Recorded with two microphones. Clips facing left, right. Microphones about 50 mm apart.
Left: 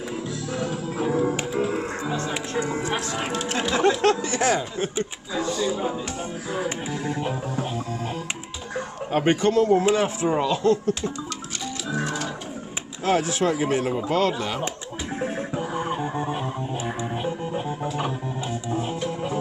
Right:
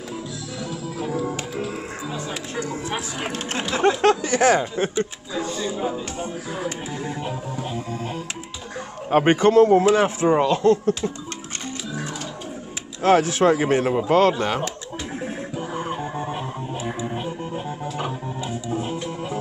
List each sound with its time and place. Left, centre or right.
0.6 s music: left
1.0 s music: left
3.3 s a man's voice: right
5.8 s speech: centre
7.1 s music: centre
9.1 s a man's voice: right
13.0 s a man's voice: right
15.6 s music: centre